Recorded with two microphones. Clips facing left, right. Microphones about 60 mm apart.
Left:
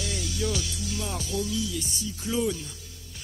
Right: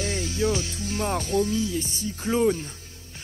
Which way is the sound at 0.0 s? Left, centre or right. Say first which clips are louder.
Right 5 dB; right.